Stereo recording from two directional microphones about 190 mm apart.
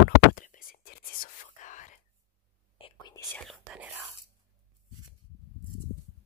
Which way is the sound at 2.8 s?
20° left (ahead or behind).